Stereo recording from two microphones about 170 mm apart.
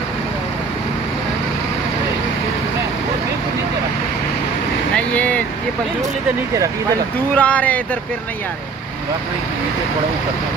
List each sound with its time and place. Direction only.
4.9 s vehicle: 10° left (ahead or behind)
7.3 s speech: 10° left (ahead or behind)